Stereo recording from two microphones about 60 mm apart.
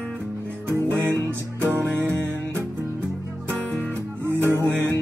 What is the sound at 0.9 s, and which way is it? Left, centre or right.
Music, right.